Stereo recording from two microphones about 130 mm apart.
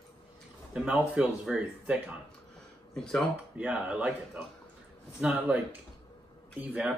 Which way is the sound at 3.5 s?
10° right (ahead or behind).